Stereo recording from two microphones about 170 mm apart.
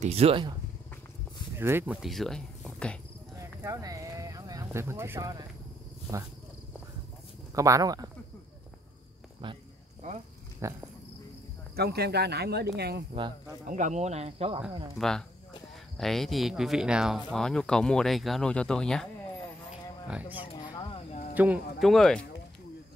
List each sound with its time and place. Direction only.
0.0 s speech: 35° right (ahead or behind)
1.6 s speech: 15° right (ahead or behind); by 3.0 s 5° left (ahead or behind)
3.3 s a sound: 20° right (ahead or behind)
7.5 s speech: 20° right (ahead or behind)
10.6 s speech: 15° right (ahead or behind)
11.7 s speech: 70° right (ahead or behind)
13.7 s speech: 45° right (ahead or behind)
15.0 s speech: 5° left (ahead or behind)
19.7 s a sound: 5° right (ahead or behind)
20.4 s a sound: 30° left (ahead or behind)
21.4 s speech: 5° right (ahead or behind)